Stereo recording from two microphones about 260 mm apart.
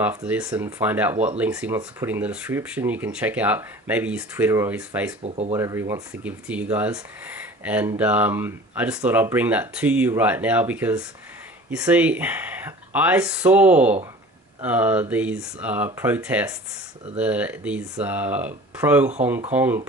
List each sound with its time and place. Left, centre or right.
0.0 s speech: centre
5.2 s speech: right
5.6 s speech: centre